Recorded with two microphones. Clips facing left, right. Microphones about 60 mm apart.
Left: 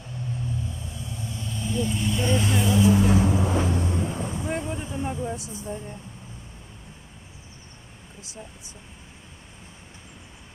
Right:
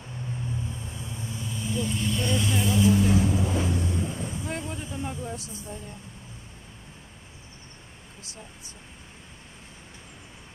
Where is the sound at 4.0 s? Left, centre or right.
Left.